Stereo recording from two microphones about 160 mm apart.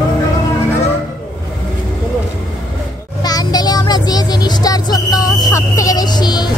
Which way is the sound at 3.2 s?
25° left (ahead or behind).